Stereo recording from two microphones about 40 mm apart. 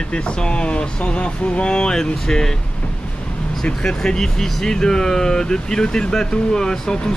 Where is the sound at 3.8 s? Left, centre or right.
Centre.